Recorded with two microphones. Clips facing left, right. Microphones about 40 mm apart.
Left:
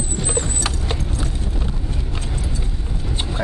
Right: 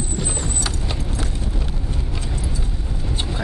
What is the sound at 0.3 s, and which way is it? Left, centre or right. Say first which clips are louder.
Horse: left 3 dB; left.